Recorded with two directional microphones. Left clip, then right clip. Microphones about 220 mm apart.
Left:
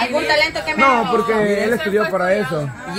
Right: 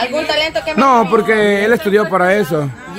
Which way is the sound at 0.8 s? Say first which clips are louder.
Right 3 dB; 50° right (ahead or behind).